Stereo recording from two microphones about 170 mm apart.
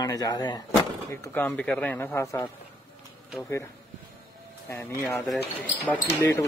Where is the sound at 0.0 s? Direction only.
20° left (ahead or behind).